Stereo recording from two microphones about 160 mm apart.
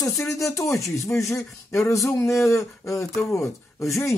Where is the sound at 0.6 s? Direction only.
Centre (ahead or behind).